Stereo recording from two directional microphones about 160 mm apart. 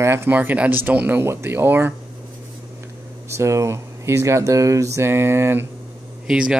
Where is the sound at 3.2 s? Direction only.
20° right (ahead or behind).